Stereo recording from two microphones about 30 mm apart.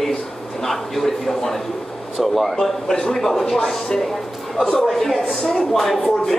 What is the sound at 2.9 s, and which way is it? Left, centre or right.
Speech, centre.